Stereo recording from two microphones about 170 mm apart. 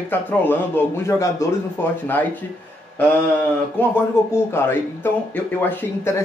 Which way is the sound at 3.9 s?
15° left (ahead or behind).